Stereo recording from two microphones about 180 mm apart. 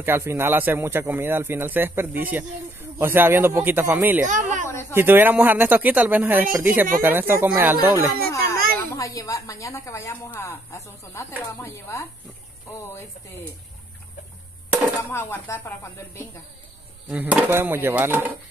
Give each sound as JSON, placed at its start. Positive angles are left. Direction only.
{"t": 0.0, "sound": "speech", "side_deg": -15}
{"t": 4.3, "sound": "a woman's voice", "side_deg": -45}
{"t": 4.9, "sound": "speech", "side_deg": -10}
{"t": 8.1, "sound": "a sound", "side_deg": -55}
{"t": 8.7, "sound": "a woman's voice", "side_deg": 20}
{"t": 15.0, "sound": "speech", "side_deg": 15}
{"t": 17.1, "sound": "speech", "side_deg": -10}